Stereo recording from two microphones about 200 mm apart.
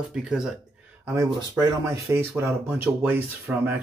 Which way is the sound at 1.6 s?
15° right (ahead or behind).